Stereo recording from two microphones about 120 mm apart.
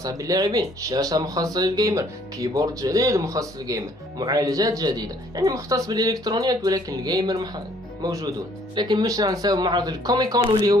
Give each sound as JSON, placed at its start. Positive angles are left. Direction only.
{"t": 0.0, "sound": "speech", "side_deg": -30}